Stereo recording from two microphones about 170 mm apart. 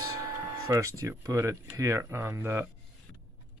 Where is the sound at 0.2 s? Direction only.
20° right (ahead or behind).